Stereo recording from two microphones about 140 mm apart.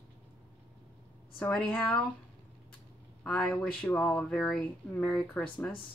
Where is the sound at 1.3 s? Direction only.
10° left (ahead or behind).